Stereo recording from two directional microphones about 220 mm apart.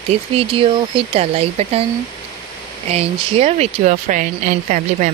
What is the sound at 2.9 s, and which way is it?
Speech, 30° right (ahead or behind).